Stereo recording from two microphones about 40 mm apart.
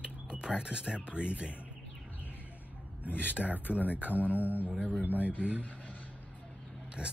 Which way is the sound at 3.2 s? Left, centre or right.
Right.